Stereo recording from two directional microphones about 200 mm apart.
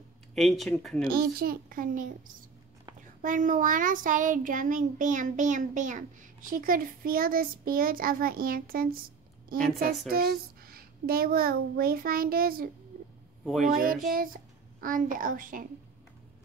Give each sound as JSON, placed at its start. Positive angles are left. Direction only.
{"t": 0.3, "sound": "speech", "side_deg": 0}
{"t": 1.0, "sound": "a child's voice", "side_deg": -45}
{"t": 9.6, "sound": "speech", "side_deg": 0}
{"t": 10.0, "sound": "a child's voice", "side_deg": -45}
{"t": 13.7, "sound": "a child's voice", "side_deg": -45}